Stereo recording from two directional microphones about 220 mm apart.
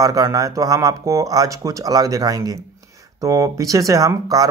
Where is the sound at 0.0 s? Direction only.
15° right (ahead or behind).